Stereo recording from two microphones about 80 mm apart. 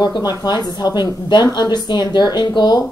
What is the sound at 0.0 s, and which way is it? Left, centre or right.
Speech, left.